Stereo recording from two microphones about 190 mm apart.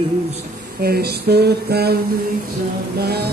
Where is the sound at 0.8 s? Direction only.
55° right (ahead or behind).